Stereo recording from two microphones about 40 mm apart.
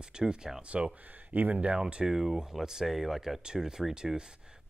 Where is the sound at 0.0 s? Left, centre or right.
Right.